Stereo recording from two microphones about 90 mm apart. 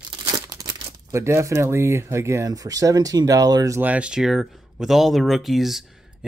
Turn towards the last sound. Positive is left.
turn(degrees=-5)  # may be behind; listen again after turning